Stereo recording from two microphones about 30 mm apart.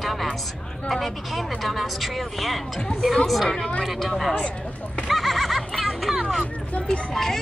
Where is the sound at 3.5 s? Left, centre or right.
Left.